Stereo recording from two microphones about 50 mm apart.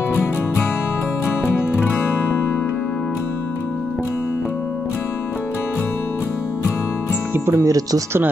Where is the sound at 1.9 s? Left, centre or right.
Left.